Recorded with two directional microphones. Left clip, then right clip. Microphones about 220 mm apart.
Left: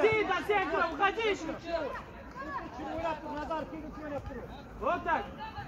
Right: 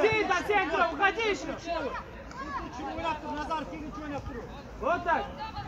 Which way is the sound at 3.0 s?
55° right (ahead or behind).